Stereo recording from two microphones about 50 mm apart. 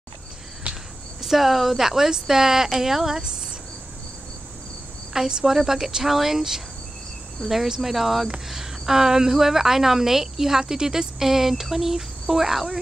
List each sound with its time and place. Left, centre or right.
0.7 s insect: right
1.2 s a woman's voice: centre
5.1 s a woman's voice: centre